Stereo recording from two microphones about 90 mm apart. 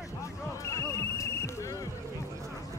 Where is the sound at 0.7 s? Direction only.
35° left (ahead or behind).